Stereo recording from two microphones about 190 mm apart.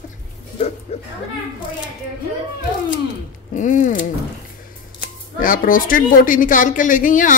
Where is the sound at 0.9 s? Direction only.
35° left (ahead or behind).